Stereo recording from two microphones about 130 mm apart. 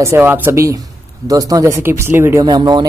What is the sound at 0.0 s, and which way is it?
Speech, 20° right (ahead or behind).